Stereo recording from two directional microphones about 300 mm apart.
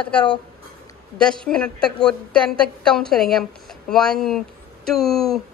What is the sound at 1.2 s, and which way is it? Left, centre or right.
A woman's voice, centre.